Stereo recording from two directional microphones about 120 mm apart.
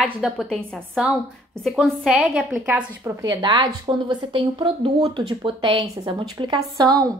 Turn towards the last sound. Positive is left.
turn(degrees=-30)  # may be behind; listen again after turning